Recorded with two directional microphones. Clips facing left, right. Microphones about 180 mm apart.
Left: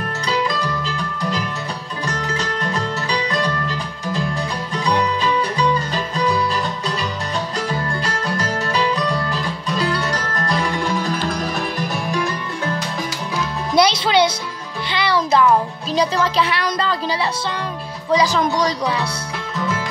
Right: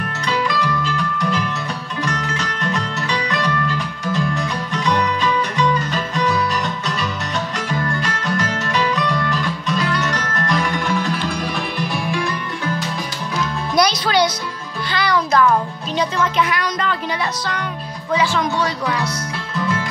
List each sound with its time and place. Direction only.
0.3 s music: 35° left (ahead or behind)
6.1 s music: 30° left (ahead or behind)
7.5 s music: 35° left (ahead or behind)
13.7 s music: 25° left (ahead or behind)
18.1 s a woman's voice: 40° left (ahead or behind)